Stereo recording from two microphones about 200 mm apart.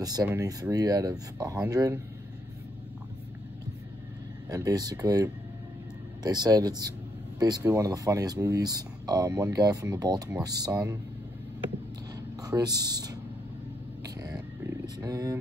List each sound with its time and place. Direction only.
0.0 s speech: 20° right (ahead or behind)
4.5 s speech: 20° right (ahead or behind)
12.4 s speech: 20° right (ahead or behind)
14.0 s a sound: 20° right (ahead or behind)